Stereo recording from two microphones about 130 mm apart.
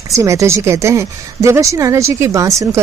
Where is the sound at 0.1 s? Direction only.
25° right (ahead or behind).